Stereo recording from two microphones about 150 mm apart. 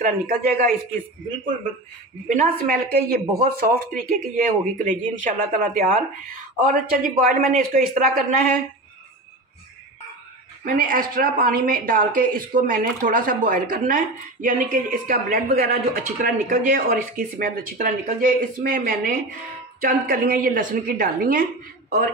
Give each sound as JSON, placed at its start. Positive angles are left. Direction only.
{"t": 0.0, "sound": "speech", "side_deg": -65}
{"t": 2.2, "sound": "speech", "side_deg": -70}
{"t": 10.6, "sound": "speech", "side_deg": -70}